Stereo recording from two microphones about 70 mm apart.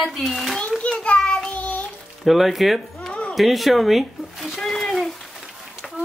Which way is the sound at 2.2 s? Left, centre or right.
Centre.